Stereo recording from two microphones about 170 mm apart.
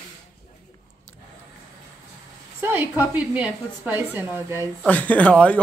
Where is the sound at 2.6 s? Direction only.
10° right (ahead or behind).